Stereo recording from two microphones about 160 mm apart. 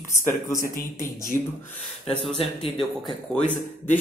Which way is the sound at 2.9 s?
Centre (ahead or behind).